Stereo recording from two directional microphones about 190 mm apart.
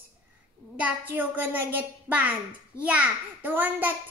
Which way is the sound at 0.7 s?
10° right (ahead or behind).